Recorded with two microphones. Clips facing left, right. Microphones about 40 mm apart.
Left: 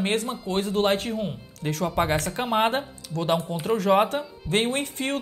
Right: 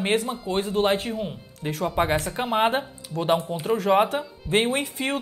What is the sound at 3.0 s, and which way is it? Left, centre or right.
Speech, centre.